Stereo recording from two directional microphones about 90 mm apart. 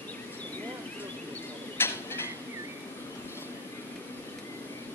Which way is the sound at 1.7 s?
25° left (ahead or behind).